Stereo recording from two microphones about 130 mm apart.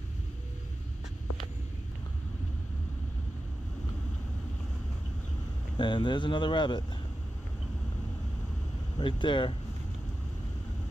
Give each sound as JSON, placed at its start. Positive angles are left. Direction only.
{"t": 5.8, "sound": "speech", "side_deg": 35}
{"t": 8.9, "sound": "speech", "side_deg": 40}